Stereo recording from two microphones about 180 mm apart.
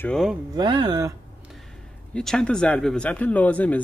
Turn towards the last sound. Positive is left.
turn(degrees=10)  # may be behind; listen again after turning